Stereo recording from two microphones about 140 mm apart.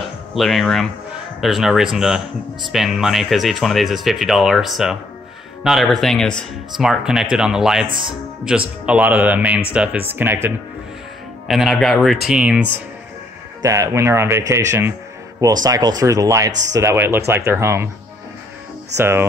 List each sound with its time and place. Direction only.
0.3 s speech: centre (ahead or behind); by 10.5 s 15° right (ahead or behind)
11.4 s speech: centre (ahead or behind)
13.6 s speech: 25° right (ahead or behind)
18.9 s speech: 15° right (ahead or behind)